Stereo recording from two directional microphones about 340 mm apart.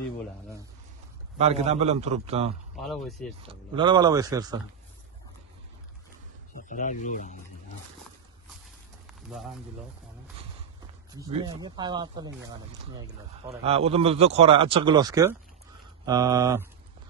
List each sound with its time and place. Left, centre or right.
1.4 s a man's voice: centre
2.7 s speech: centre
3.4 s speech: centre
6.7 s speech: left
9.3 s speech: centre
11.4 s speech: centre